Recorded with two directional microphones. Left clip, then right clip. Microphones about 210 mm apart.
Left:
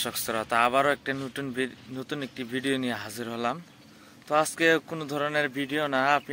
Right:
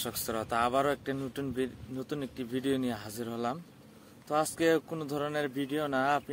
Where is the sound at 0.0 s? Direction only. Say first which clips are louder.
Left 5 dB; 5° left (ahead or behind).